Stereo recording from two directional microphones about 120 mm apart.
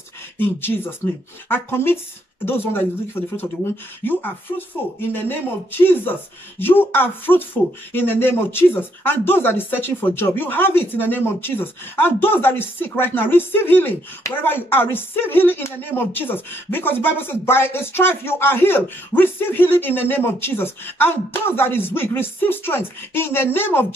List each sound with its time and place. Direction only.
0.4 s speech: 20° left (ahead or behind)